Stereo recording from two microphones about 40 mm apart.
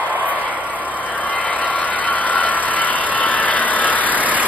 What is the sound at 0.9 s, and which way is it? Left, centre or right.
Vehicle, left.